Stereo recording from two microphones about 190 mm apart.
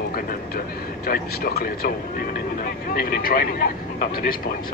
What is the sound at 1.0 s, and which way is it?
Speech, 50° left (ahead or behind).